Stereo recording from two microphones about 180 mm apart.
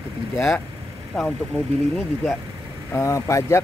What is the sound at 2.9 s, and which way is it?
Speech, 15° left (ahead or behind).